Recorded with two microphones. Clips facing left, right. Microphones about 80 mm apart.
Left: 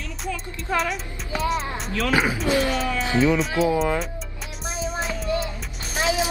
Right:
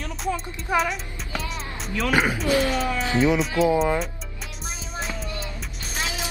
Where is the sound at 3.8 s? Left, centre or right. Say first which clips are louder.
Right 1 dB; centre.